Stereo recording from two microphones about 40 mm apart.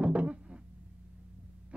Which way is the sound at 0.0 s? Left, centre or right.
Right.